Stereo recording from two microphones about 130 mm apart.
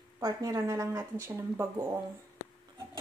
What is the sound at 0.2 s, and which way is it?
Speech, 25° right (ahead or behind).